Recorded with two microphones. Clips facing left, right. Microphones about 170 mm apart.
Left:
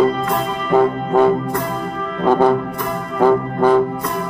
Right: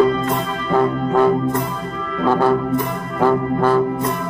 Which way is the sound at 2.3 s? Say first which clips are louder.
Left 2 dB; 20° left (ahead or behind).